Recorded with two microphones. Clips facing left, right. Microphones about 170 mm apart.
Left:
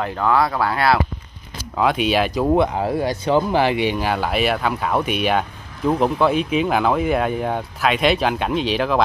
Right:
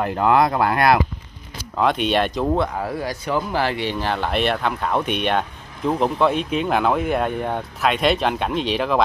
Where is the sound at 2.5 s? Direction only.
20° left (ahead or behind).